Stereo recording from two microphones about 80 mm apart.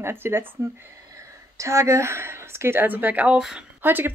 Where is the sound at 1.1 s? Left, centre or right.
Right; by 3.4 s centre.